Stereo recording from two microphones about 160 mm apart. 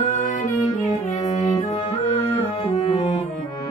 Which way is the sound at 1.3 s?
40° left (ahead or behind).